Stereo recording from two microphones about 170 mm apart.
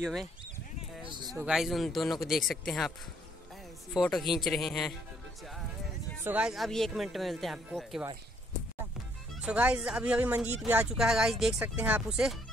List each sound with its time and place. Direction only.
0.0 s speech: centre (ahead or behind)
1.0 s speech: 30° right (ahead or behind)
1.3 s speech: 5° right (ahead or behind)
3.9 s speech: centre (ahead or behind)
6.2 s speech: 5° right (ahead or behind)
9.4 s speech: 5° right (ahead or behind)